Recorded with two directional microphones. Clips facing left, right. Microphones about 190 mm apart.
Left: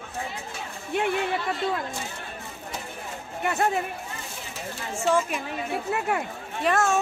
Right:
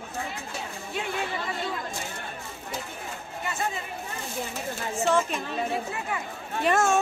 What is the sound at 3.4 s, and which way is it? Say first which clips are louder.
Speech: left 7 dB; 60° left (ahead or behind).